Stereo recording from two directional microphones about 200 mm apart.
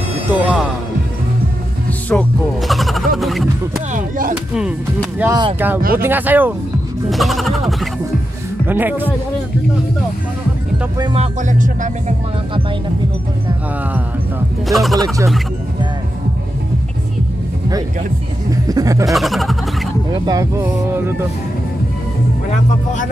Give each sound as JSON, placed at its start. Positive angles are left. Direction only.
{"t": 0.3, "sound": "speech", "side_deg": 0}
{"t": 2.7, "sound": "a sound", "side_deg": 0}
{"t": 3.2, "sound": "speech", "side_deg": 0}
{"t": 3.9, "sound": "music", "side_deg": -40}
{"t": 5.2, "sound": "speech", "side_deg": -20}
{"t": 5.9, "sound": "music", "side_deg": -10}
{"t": 7.1, "sound": "a sound", "side_deg": 0}
{"t": 8.6, "sound": "music", "side_deg": -10}
{"t": 11.1, "sound": "music", "side_deg": -40}
{"t": 14.7, "sound": "speech", "side_deg": 0}
{"t": 18.5, "sound": "speech", "side_deg": -20}
{"t": 19.0, "sound": "speech", "side_deg": 0}
{"t": 20.2, "sound": "music", "side_deg": -15}